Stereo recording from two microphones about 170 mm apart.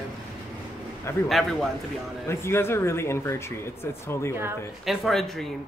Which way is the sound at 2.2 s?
15° left (ahead or behind).